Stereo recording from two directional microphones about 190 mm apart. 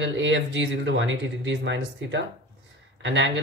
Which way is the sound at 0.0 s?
75° right (ahead or behind).